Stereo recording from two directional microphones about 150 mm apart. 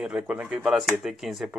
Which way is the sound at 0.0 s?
5° right (ahead or behind).